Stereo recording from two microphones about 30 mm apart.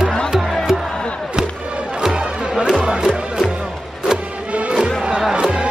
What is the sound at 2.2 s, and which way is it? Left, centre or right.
Music, right.